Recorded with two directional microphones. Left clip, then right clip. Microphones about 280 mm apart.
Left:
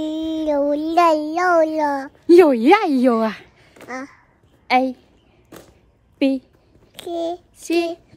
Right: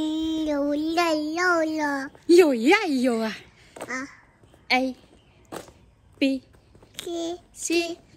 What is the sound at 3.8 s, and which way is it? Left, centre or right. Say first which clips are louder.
Speech: left 1 dB; centre.